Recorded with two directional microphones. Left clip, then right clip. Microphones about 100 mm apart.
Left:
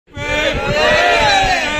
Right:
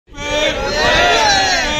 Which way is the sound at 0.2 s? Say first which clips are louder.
Even; 5° left (ahead or behind).